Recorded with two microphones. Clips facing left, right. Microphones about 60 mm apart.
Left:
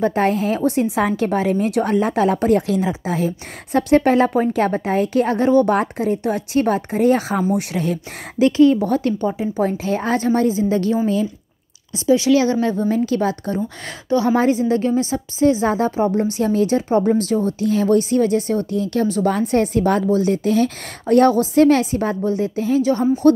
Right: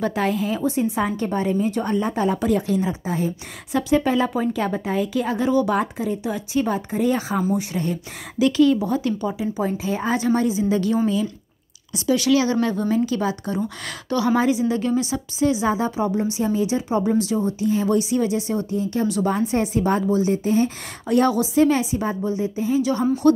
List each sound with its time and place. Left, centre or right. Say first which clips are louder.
0.0 s a woman's voice: left 5 dB; left
0.9 s a woman's voice: left 4 dB; left
2.3 s speech: left 4 dB; left
8.4 s speech: left 4 dB; left
8.8 s a woman's voice: left 4 dB; left
12.9 s a woman's voice: left 3 dB; left
13.8 s speech: left 5 dB; left
14.3 s a woman's voice: left 1 dB; left
18.7 s speech: left 3 dB; left
22.8 s speech: left 4 dB; left